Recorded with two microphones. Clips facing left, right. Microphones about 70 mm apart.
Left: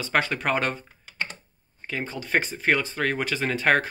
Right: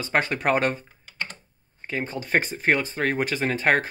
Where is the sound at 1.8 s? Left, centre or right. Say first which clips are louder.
Right 2 dB; right.